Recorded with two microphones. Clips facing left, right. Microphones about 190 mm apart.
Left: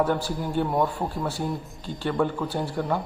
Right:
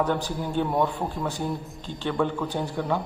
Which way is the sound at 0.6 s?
5° left (ahead or behind).